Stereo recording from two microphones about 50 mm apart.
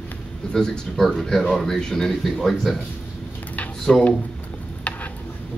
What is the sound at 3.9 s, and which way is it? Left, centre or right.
Speech, left.